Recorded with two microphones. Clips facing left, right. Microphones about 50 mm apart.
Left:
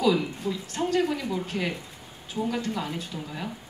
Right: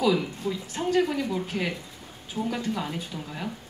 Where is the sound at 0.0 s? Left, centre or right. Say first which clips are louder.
Even; centre.